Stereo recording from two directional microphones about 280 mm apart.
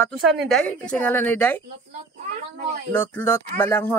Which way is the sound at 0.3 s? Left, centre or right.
Centre.